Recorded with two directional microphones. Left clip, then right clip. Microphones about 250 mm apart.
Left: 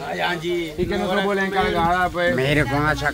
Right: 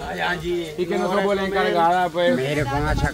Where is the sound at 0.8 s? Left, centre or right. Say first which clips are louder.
Right 2 dB; centre.